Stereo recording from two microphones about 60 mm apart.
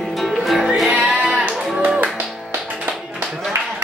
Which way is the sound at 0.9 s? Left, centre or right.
Centre.